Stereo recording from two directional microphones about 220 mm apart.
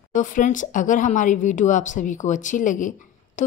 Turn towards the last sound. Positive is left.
turn(degrees=35)  # may be behind; listen again after turning